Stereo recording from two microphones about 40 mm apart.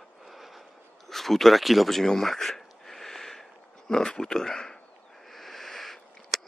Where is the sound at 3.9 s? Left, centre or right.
Centre.